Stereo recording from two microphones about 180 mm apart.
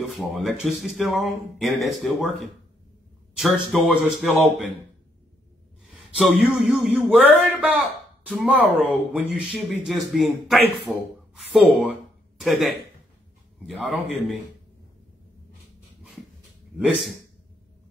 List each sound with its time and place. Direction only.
0.3 s speech: 5° right (ahead or behind)
3.3 s speech: centre (ahead or behind)
5.9 s speech: centre (ahead or behind)
11.8 s a sound: 5° right (ahead or behind)
13.7 s speech: 5° right (ahead or behind)